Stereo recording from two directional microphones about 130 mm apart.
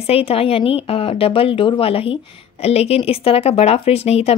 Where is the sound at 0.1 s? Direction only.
50° left (ahead or behind).